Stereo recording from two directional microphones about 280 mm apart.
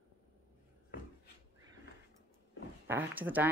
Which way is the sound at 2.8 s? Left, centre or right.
Centre.